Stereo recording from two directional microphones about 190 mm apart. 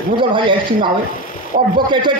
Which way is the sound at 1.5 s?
50° right (ahead or behind).